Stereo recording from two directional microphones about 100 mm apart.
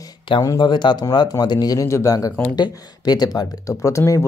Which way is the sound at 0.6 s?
50° left (ahead or behind).